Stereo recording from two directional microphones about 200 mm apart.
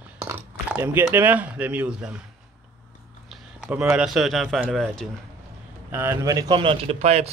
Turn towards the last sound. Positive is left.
turn(degrees=-30)  # may be behind; listen again after turning